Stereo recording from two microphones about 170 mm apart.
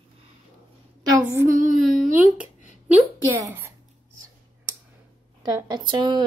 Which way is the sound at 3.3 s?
15° right (ahead or behind).